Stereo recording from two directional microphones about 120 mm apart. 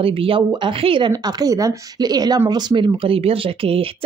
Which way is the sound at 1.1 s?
30° right (ahead or behind).